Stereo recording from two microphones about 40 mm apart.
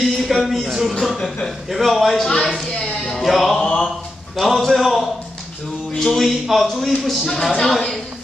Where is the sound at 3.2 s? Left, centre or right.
Centre.